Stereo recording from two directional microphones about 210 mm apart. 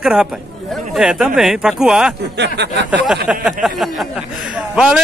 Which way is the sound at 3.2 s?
Centre (ahead or behind).